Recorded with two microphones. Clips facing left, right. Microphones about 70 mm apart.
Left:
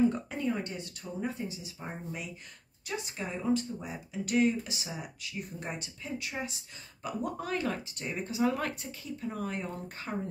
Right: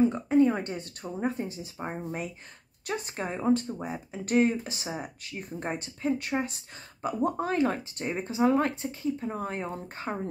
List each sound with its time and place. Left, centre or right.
0.4 s speech: right